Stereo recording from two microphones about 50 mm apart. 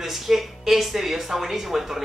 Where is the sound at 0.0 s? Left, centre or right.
Centre.